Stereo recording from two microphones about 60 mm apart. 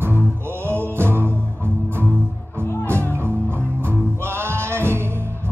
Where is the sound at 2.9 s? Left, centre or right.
Right.